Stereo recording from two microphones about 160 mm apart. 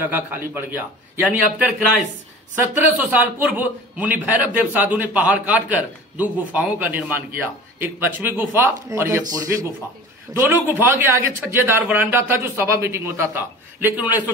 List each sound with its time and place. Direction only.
0.1 s a man's voice: 10° right (ahead or behind)